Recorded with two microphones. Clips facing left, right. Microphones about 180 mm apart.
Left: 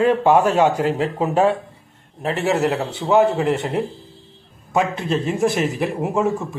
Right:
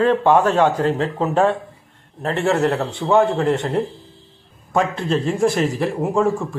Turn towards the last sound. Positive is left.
turn(degrees=5)  # may be behind; listen again after turning